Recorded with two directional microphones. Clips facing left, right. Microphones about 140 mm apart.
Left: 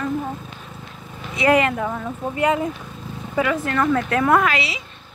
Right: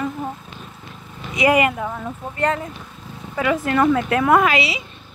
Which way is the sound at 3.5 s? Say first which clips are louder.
Right 5 dB; 10° right (ahead or behind).